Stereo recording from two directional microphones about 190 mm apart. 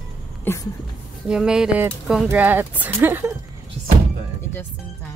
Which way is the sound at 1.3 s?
5° right (ahead or behind).